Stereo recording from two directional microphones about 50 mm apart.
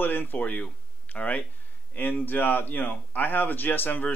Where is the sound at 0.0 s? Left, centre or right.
Left.